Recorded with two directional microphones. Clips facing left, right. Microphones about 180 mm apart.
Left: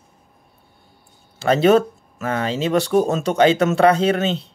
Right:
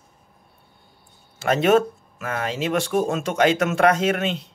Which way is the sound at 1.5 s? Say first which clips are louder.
Left 3 dB; 35° left (ahead or behind).